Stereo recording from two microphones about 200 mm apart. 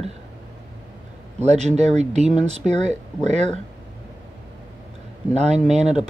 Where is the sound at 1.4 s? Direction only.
35° right (ahead or behind).